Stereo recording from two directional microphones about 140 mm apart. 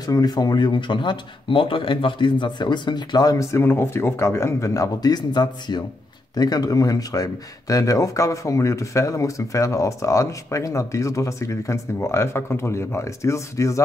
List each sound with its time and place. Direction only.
0.0 s speech: 25° left (ahead or behind)